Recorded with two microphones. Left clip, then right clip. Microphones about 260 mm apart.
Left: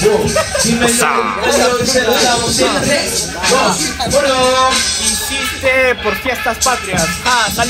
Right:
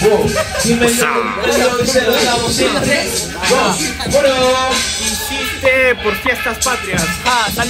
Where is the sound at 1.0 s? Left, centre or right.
Centre.